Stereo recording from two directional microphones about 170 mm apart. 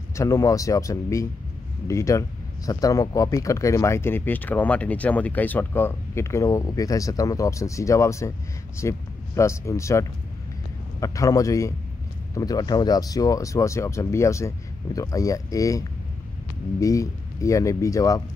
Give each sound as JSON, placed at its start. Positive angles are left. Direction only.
{"t": 0.1, "sound": "speech", "side_deg": 20}
{"t": 16.8, "sound": "speech", "side_deg": 20}